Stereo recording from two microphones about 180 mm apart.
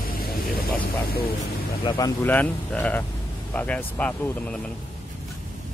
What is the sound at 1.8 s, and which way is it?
Speech, 30° left (ahead or behind).